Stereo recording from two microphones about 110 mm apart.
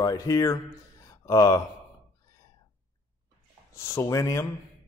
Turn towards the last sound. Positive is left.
turn(degrees=25)  # may be behind; listen again after turning